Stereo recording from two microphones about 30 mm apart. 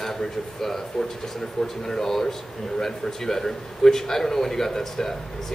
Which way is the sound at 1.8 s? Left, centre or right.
Centre.